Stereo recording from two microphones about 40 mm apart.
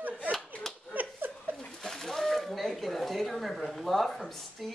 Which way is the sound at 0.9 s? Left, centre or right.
Right.